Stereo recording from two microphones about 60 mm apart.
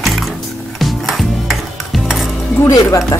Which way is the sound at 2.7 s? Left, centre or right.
Left.